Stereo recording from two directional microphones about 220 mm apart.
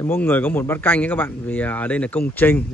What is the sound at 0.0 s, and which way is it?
Speech, 10° left (ahead or behind).